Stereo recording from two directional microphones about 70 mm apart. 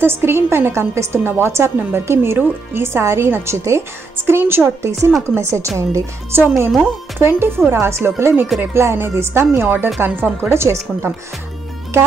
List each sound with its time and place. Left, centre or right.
0.0 s a woman's voice: right
6.8 s a woman's voice: right
10.5 s a woman's voice: right